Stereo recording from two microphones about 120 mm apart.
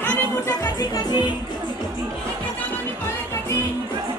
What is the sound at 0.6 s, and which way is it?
Speech, 35° left (ahead or behind).